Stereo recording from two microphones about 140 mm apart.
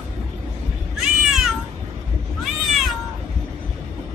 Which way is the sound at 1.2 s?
Centre (ahead or behind).